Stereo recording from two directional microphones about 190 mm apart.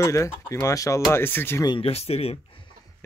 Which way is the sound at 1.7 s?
30° left (ahead or behind).